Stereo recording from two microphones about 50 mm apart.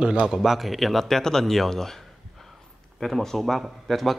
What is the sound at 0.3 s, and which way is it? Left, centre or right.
Speech, centre.